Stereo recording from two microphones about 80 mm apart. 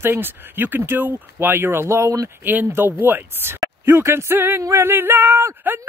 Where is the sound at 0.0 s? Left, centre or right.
Right.